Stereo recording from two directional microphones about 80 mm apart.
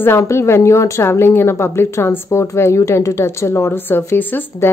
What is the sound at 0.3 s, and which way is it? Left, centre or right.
A woman's voice, left.